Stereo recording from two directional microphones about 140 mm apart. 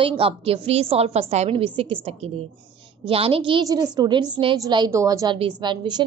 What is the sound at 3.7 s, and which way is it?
A woman's voice, 30° right (ahead or behind).